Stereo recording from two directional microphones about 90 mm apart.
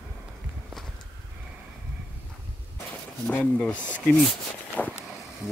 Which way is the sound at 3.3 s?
15° left (ahead or behind).